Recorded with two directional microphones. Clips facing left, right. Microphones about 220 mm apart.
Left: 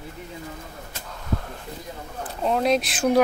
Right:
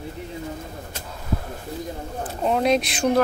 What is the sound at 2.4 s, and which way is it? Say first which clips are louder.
Speech: right 1 dB; centre (ahead or behind).